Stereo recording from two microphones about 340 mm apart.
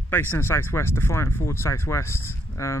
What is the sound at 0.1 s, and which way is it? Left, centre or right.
Speech, centre.